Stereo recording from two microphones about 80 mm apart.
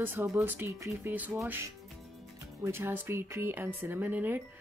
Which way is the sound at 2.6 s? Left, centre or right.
Right.